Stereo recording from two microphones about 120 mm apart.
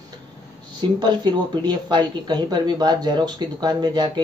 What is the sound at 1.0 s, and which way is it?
Speech, 35° right (ahead or behind).